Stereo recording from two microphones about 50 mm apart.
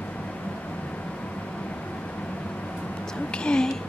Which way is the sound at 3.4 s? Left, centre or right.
Centre.